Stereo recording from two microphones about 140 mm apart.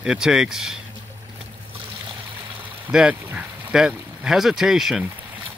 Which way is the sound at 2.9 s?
5° right (ahead or behind).